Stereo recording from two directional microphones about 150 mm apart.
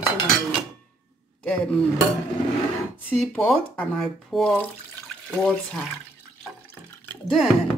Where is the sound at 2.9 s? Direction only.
10° left (ahead or behind).